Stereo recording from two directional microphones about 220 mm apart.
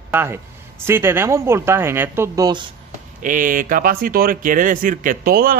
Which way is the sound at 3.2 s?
35° right (ahead or behind).